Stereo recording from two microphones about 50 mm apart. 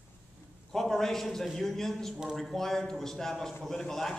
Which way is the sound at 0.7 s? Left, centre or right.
Centre.